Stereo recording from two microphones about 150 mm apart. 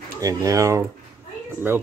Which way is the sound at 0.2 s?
20° right (ahead or behind).